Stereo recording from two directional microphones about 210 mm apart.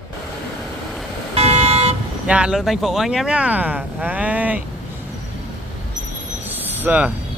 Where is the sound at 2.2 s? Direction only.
5° right (ahead or behind).